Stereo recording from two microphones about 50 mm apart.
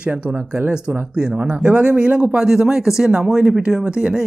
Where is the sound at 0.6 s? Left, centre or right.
Centre.